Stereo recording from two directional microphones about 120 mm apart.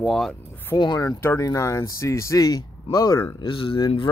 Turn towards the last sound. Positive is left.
turn(degrees=45)  # may be behind; listen again after turning